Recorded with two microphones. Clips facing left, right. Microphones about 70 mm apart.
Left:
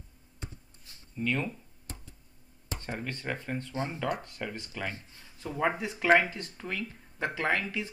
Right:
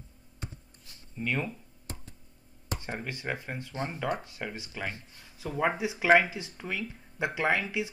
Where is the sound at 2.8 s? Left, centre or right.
Centre.